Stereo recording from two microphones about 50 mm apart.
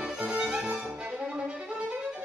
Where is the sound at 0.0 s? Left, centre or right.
Right.